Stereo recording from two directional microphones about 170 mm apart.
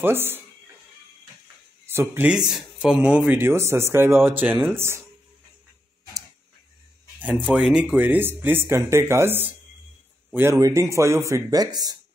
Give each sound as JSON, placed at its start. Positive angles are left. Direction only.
{"t": 0.0, "sound": "speech", "side_deg": -15}
{"t": 1.9, "sound": "speech", "side_deg": -15}
{"t": 7.2, "sound": "speech", "side_deg": -10}